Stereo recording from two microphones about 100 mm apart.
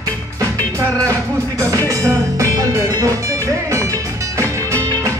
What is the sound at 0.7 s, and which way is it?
Music, 35° right (ahead or behind).